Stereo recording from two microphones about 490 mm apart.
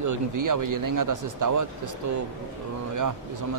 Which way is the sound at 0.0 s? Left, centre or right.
Right.